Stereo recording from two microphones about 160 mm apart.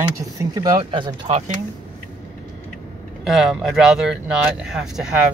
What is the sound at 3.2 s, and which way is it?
Speech, centre (ahead or behind).